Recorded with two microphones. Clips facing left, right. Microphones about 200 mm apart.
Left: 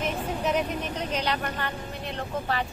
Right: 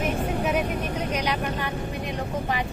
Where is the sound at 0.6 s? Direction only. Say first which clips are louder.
Right 2 dB; 50° right (ahead or behind).